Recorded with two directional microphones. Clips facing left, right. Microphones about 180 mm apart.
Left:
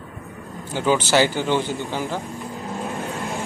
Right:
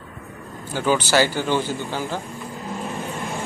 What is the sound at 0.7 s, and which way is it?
Speech, 20° left (ahead or behind).